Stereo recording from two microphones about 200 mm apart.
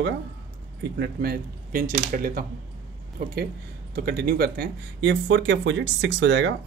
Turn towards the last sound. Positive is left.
turn(degrees=-65)  # may be behind; listen again after turning